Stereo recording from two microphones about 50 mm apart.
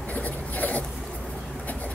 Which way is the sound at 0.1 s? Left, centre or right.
Left.